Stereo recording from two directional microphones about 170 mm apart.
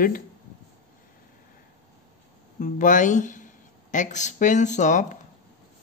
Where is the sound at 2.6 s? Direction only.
50° left (ahead or behind).